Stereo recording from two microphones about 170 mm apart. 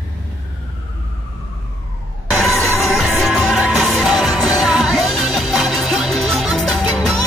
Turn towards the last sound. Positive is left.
turn(degrees=0)  # may be behind; listen again after turning